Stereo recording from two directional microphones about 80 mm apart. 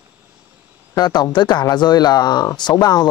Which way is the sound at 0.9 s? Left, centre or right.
Left.